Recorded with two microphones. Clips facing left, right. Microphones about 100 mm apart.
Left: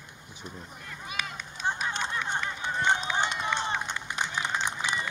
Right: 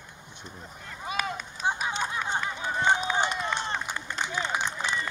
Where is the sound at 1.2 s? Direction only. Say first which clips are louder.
Right 5 dB; 40° right (ahead or behind).